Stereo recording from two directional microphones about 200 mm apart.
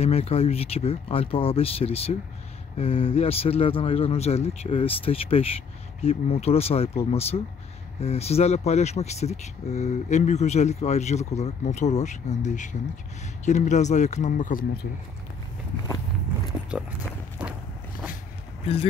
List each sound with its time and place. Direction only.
0.0 s speech: 30° left (ahead or behind); by 14.9 s 50° left (ahead or behind)
16.7 s speech: 5° right (ahead or behind)
17.4 s walk: 10° right (ahead or behind)